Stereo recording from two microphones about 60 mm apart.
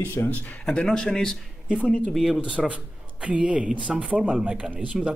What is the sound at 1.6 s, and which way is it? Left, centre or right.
Speech, centre.